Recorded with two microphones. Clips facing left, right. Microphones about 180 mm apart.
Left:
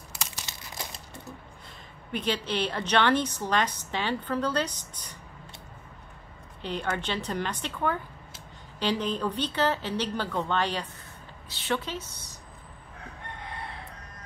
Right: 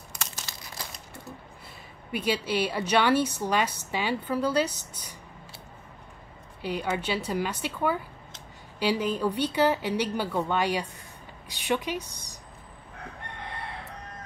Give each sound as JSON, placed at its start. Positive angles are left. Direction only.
{"t": 0.5, "sound": "crumpling", "side_deg": 20}
{"t": 2.1, "sound": "a woman's voice", "side_deg": -10}
{"t": 6.6, "sound": "a woman's voice", "side_deg": -10}